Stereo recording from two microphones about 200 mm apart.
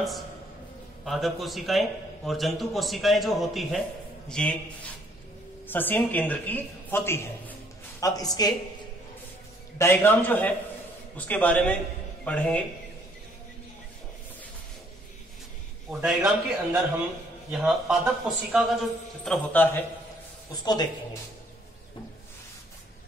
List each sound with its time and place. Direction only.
1.0 s a man's voice: centre (ahead or behind)
5.7 s a man's voice: 10° left (ahead or behind)
9.8 s a man's voice: 10° left (ahead or behind)
15.9 s a man's voice: centre (ahead or behind)
20.6 s speech: 20° left (ahead or behind)